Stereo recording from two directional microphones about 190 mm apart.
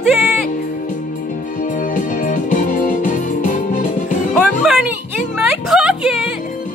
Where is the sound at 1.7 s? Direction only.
45° left (ahead or behind).